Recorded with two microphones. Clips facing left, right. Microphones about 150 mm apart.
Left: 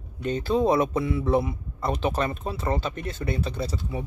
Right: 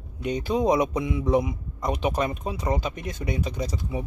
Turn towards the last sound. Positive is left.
turn(degrees=-15)  # may be behind; listen again after turning